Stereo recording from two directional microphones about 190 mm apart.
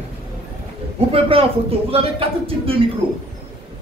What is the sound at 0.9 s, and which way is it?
Speech, 30° right (ahead or behind).